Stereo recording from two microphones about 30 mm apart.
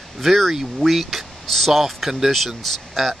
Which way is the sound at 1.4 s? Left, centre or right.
Centre.